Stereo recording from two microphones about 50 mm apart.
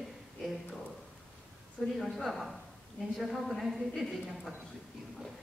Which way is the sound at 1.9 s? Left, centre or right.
Centre.